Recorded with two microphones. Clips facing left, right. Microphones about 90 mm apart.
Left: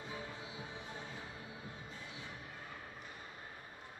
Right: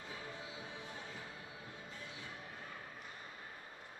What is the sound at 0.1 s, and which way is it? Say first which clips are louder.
Music: even; 25° left (ahead or behind).